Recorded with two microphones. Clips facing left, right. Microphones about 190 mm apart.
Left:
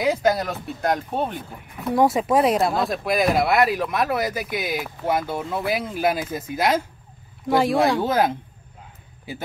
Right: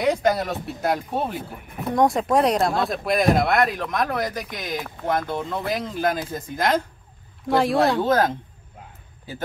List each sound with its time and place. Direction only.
0.0 s speech: centre (ahead or behind)